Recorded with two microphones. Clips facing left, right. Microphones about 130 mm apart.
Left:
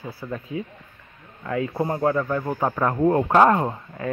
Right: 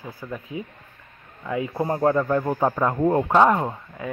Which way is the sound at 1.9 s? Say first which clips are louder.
Right 4 dB; 20° right (ahead or behind).